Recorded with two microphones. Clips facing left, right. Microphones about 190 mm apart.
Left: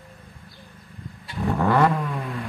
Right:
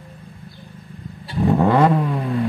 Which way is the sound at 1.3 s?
20° right (ahead or behind).